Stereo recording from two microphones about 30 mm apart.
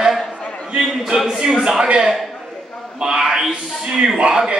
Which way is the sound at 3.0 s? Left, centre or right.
Right.